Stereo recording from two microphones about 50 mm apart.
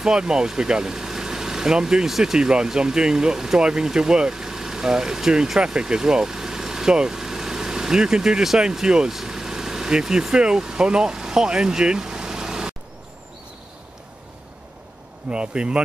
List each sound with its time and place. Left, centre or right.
0.0 s speech: centre
15.2 s speech: right